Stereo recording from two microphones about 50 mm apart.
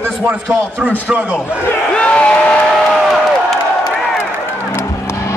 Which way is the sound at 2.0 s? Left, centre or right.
Left.